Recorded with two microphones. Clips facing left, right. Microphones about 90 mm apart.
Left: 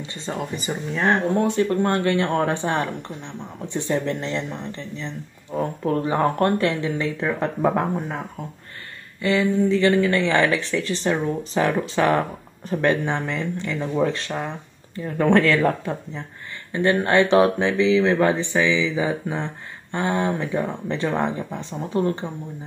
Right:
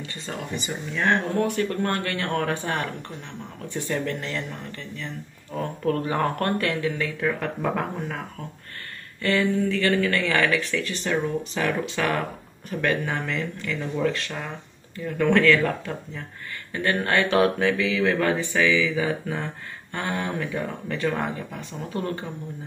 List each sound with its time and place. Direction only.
0.1 s speech: 30° left (ahead or behind)
9.2 s speech: 20° left (ahead or behind)